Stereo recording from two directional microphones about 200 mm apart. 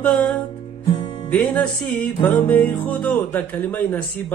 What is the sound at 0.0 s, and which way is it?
Music, 5° left (ahead or behind).